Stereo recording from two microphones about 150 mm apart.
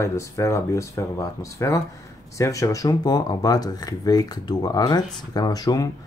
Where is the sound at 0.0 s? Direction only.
20° left (ahead or behind).